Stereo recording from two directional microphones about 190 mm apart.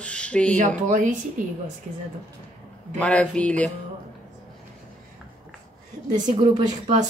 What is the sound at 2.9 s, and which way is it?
Speech, 5° left (ahead or behind).